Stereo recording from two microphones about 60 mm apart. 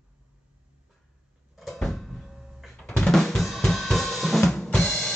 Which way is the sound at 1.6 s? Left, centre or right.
Centre.